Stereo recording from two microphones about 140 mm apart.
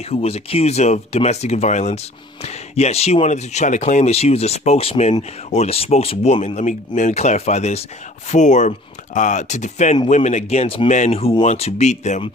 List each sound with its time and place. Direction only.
0.0 s speech: 45° left (ahead or behind)